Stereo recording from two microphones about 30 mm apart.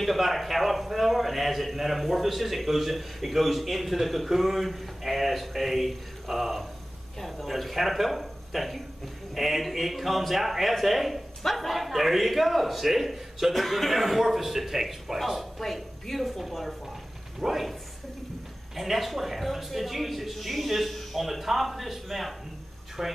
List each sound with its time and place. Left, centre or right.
0.0 s a man's voice: centre
18.8 s a man's voice: centre